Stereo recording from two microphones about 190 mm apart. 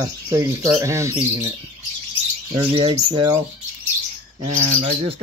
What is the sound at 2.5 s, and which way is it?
Speech, 25° right (ahead or behind).